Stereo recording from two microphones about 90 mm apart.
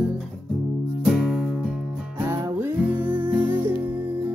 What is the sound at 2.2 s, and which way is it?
Music, 25° right (ahead or behind).